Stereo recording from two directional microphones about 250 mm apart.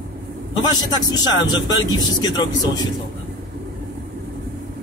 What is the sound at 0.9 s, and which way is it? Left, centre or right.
Speech, centre.